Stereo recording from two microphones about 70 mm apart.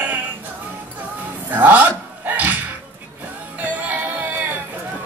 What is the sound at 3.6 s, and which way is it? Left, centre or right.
Music, right.